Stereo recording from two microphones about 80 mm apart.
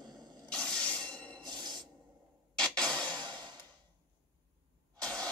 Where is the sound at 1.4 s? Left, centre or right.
Right.